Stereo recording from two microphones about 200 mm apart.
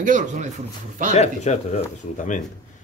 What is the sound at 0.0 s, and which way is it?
Speech, 40° right (ahead or behind).